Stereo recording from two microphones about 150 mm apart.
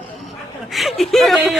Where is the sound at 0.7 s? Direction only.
Centre (ahead or behind).